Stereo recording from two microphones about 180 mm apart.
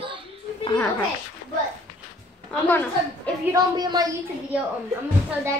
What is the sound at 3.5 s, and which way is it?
Speech, 20° right (ahead or behind).